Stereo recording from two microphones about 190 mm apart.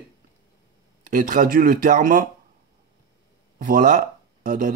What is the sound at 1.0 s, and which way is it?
Speech, 45° right (ahead or behind).